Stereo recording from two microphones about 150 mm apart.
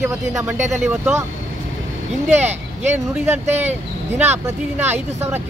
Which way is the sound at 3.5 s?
45° right (ahead or behind).